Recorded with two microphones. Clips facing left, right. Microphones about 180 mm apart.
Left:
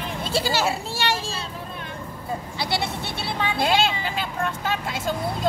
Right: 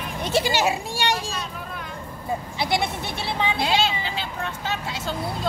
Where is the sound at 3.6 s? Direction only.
50° left (ahead or behind).